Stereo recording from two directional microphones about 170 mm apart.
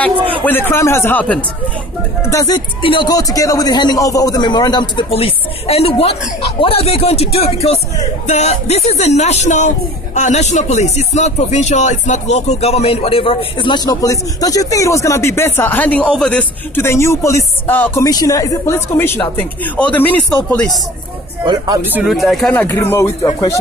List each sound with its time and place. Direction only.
0.4 s a man's voice: 10° left (ahead or behind)
18.0 s speech: 20° left (ahead or behind)
21.9 s speech: centre (ahead or behind); by 23.6 s 20° left (ahead or behind)